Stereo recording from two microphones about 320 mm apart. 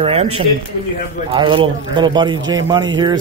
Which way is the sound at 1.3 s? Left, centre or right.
Centre.